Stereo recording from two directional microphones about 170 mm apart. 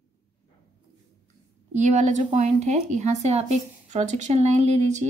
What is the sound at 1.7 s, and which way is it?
Speech, 45° right (ahead or behind).